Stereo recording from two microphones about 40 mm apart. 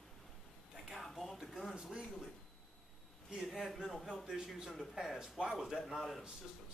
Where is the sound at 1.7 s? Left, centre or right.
Right.